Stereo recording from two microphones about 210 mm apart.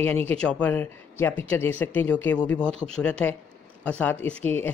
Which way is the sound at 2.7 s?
30° right (ahead or behind).